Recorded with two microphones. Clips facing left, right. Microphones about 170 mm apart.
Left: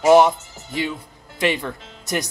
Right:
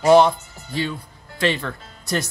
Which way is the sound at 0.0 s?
10° left (ahead or behind).